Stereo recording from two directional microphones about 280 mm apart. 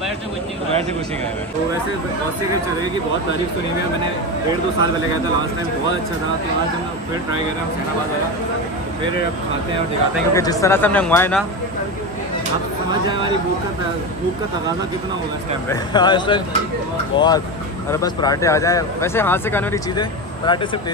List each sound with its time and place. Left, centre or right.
10.3 s speech: centre
15.7 s speech: centre